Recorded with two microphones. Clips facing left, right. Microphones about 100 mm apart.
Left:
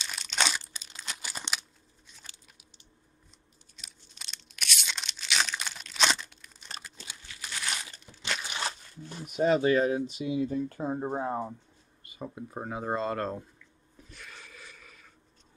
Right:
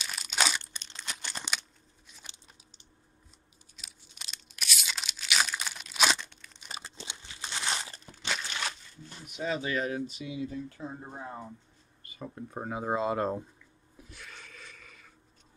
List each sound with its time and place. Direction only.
0.0 s crumpling: 5° right (ahead or behind)
2.3 s a sound: 20° right (ahead or behind)
3.7 s tearing: 5° right (ahead or behind)
6.8 s crumpling: 25° right (ahead or behind)
8.5 s a sound: 15° left (ahead or behind)
9.2 s speech: 45° left (ahead or behind)
10.7 s speech: 45° left (ahead or behind)
12.0 s speech: 10° left (ahead or behind); by 13.4 s 10° right (ahead or behind)
13.9 s a sound: centre (ahead or behind)